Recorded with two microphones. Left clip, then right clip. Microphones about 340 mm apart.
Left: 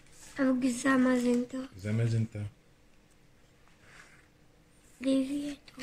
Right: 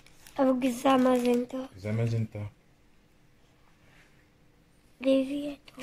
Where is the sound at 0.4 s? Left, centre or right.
Centre.